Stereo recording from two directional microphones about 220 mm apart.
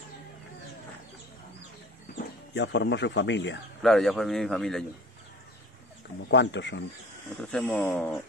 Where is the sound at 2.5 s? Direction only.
55° left (ahead or behind).